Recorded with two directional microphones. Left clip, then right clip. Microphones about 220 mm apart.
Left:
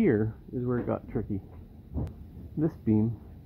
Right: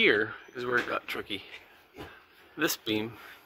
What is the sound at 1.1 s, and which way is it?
Speech, 15° right (ahead or behind).